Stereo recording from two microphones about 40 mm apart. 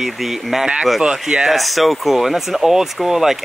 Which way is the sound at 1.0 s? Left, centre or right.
Right.